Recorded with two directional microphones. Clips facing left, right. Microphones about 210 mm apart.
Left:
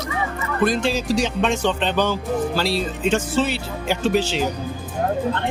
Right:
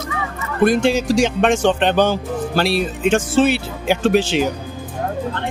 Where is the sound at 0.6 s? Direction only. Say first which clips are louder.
Right 5 dB; 60° right (ahead or behind); by 1.5 s 80° right.